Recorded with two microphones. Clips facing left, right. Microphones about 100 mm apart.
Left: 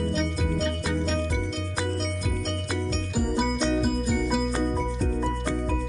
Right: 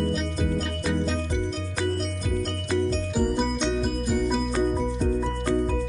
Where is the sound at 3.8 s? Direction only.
5° left (ahead or behind).